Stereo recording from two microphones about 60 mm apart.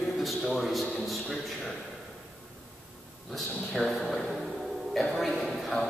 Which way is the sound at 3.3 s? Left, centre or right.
Centre.